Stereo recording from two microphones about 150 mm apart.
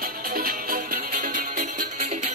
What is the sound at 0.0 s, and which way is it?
Music, 75° right (ahead or behind).